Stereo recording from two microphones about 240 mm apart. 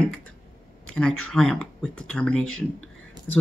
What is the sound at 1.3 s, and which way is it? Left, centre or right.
Speech, centre.